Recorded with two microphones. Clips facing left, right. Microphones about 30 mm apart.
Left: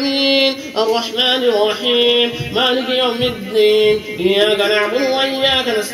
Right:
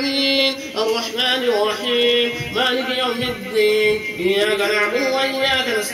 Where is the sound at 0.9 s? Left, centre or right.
Left.